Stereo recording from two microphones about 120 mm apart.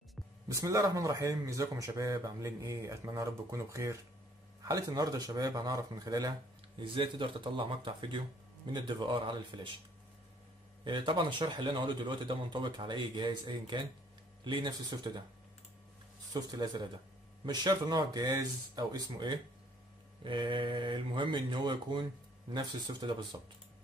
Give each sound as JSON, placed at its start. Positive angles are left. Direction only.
{"t": 0.5, "sound": "speech", "side_deg": -25}
{"t": 6.8, "sound": "speech", "side_deg": -45}
{"t": 10.8, "sound": "speech", "side_deg": -40}
{"t": 16.3, "sound": "speech", "side_deg": -35}